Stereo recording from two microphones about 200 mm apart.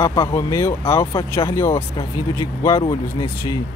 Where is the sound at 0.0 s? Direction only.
15° left (ahead or behind).